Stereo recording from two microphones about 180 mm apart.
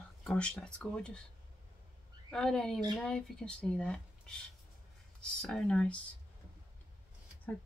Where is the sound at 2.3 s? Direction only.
Centre (ahead or behind).